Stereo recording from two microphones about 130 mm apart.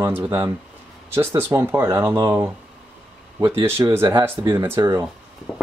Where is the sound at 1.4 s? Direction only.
20° right (ahead or behind).